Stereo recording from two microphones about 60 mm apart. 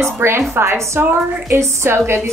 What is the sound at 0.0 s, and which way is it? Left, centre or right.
A woman's voice, right.